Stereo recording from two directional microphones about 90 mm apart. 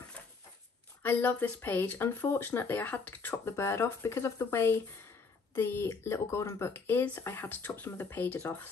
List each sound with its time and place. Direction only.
1.0 s speech: 20° left (ahead or behind)